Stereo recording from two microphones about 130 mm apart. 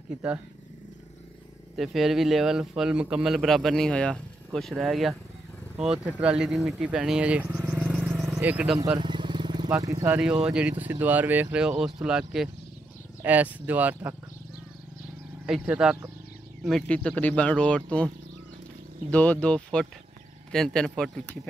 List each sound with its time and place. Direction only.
1.8 s a man's voice: centre (ahead or behind)
7.7 s a sound: 5° right (ahead or behind)
8.4 s speech: 10° right (ahead or behind)
8.9 s vehicle: 35° right (ahead or behind)
9.8 s speech: 25° right (ahead or behind)
10.1 s a man's voice: 10° right (ahead or behind)
15.4 s a man's voice: 5° right (ahead or behind)
16.6 s a man's voice: 5° left (ahead or behind)